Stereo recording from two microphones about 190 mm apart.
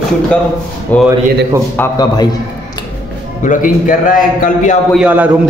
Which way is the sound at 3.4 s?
45° left (ahead or behind).